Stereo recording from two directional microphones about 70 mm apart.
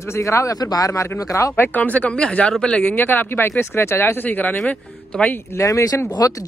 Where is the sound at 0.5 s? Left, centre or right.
Left.